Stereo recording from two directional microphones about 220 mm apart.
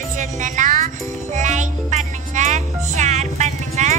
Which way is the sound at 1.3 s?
35° right (ahead or behind).